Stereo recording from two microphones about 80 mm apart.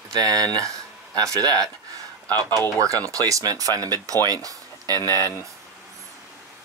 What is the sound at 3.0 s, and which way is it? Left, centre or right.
Speech, right.